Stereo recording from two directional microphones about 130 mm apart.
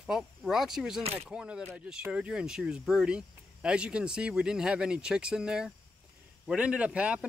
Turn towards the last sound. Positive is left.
turn(degrees=-10)  # may be behind; listen again after turning